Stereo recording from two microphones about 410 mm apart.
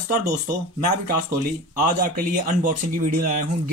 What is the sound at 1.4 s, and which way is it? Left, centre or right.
Speech, centre.